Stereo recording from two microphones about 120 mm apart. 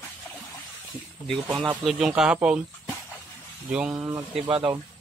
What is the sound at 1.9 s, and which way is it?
Speech, 5° right (ahead or behind).